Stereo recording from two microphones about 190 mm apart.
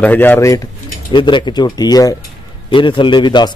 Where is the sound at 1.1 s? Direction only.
25° left (ahead or behind).